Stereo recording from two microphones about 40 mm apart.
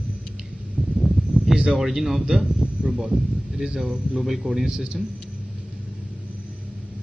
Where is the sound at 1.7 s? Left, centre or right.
Centre; by 5.0 s right.